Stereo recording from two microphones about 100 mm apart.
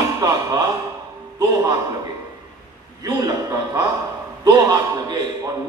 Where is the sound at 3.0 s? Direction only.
40° right (ahead or behind).